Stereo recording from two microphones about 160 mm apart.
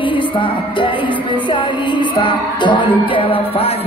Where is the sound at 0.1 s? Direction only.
30° left (ahead or behind).